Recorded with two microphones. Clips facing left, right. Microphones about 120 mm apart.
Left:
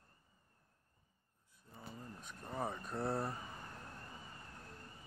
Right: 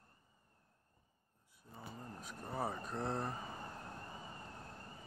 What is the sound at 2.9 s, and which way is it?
Speech, 5° left (ahead or behind).